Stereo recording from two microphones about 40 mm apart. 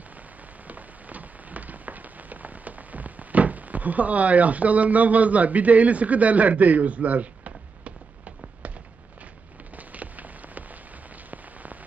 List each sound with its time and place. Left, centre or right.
0.7 s rain on surface: right
9.8 s rain on surface: right